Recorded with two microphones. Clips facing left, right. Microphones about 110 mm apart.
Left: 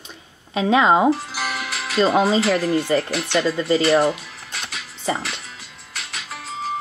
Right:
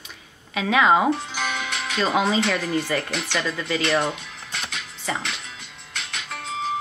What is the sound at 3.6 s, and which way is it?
Speech, 30° left (ahead or behind).